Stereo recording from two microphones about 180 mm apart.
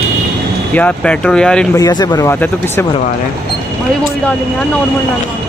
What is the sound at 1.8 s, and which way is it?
Speech, 20° left (ahead or behind).